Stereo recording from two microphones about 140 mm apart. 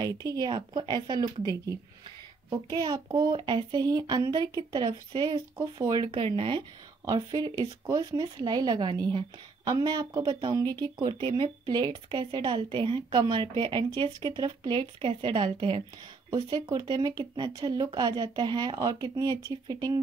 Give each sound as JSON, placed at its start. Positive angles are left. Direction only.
{"t": 0.0, "sound": "speech", "side_deg": -25}
{"t": 2.5, "sound": "a woman's voice", "side_deg": -30}